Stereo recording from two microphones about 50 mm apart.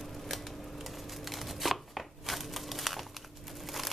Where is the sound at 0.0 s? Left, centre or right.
Centre.